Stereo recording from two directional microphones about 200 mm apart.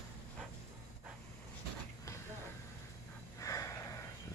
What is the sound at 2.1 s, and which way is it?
Vehicle, 15° left (ahead or behind).